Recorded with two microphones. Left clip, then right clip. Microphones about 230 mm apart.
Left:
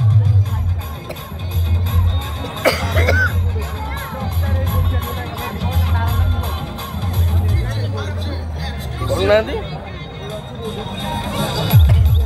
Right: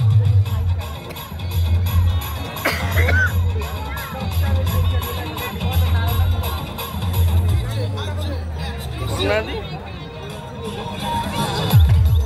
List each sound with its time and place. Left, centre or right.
2.6 s music: left
5.4 s music: left
9.1 s music: left
11.1 s music: left